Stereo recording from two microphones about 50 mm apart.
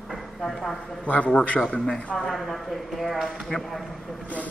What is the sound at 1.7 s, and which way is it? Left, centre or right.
Speech, centre.